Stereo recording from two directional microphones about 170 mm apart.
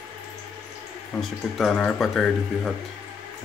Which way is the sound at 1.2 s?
Centre (ahead or behind).